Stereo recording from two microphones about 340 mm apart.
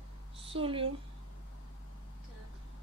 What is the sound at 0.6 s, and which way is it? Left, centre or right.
Speech, centre.